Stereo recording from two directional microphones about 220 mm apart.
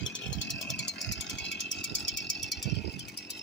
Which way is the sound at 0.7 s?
55° left (ahead or behind).